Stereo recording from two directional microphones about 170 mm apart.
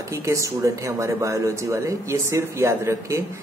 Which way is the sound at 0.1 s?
15° right (ahead or behind).